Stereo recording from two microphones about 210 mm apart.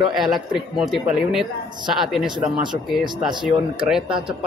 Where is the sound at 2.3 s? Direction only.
20° right (ahead or behind).